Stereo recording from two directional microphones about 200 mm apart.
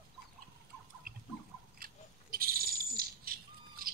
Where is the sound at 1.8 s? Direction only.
45° right (ahead or behind).